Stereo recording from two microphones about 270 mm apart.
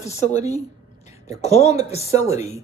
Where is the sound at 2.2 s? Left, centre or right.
Centre.